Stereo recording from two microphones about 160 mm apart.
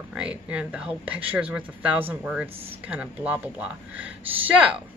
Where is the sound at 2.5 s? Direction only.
35° right (ahead or behind).